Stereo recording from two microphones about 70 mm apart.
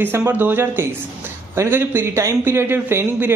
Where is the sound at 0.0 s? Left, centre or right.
Right.